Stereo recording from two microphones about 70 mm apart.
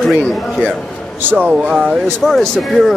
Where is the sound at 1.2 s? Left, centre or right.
Right.